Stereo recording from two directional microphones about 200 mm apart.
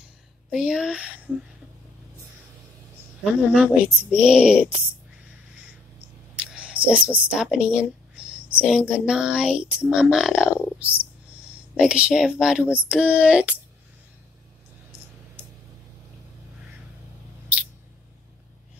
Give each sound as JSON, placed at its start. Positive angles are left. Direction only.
{"t": 0.5, "sound": "speech", "side_deg": -5}
{"t": 3.5, "sound": "speech", "side_deg": -5}
{"t": 6.3, "sound": "a sound", "side_deg": -5}
{"t": 7.0, "sound": "speech", "side_deg": -5}